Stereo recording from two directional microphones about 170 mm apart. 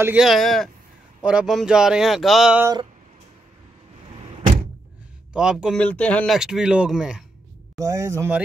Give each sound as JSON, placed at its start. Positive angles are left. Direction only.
{"t": 0.0, "sound": "speech", "side_deg": -5}
{"t": 2.6, "sound": "speech", "side_deg": -25}
{"t": 5.3, "sound": "speech", "side_deg": -5}
{"t": 5.8, "sound": "speech", "side_deg": 10}
{"t": 7.8, "sound": "speech", "side_deg": -20}